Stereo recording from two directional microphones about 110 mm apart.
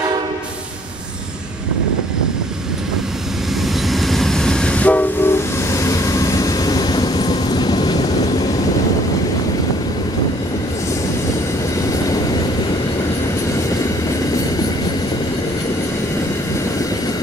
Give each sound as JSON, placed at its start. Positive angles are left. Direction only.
{"t": 3.6, "sound": "train", "side_deg": 0}